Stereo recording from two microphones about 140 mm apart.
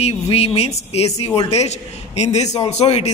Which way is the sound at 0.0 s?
45° left (ahead or behind).